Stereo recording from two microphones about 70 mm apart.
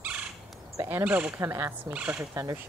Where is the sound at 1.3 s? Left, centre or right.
Right.